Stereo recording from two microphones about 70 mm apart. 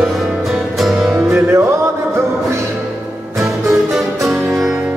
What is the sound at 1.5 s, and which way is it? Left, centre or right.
Music, right.